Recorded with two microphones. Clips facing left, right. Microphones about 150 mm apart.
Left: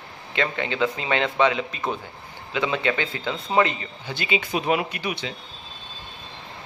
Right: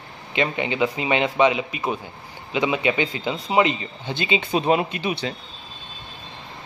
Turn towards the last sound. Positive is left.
turn(degrees=-25)  # may be behind; listen again after turning